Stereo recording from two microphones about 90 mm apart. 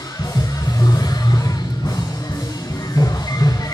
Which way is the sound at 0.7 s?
45° left (ahead or behind).